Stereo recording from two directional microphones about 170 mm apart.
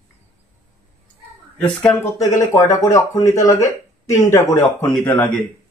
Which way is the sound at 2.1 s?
20° left (ahead or behind).